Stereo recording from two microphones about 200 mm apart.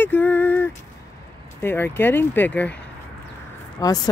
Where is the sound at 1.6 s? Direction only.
10° left (ahead or behind).